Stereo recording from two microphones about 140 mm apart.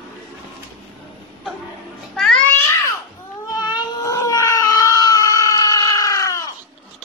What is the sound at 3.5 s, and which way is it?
Cat, 30° left (ahead or behind).